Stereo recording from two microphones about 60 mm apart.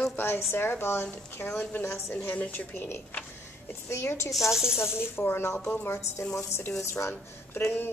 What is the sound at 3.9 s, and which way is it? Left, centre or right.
Speech, left.